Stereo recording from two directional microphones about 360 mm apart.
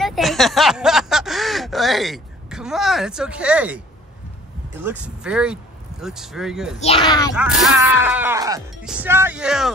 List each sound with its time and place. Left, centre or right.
0.0 s a sound: centre
4.8 s speech: centre
6.8 s speech: centre
7.3 s speech: centre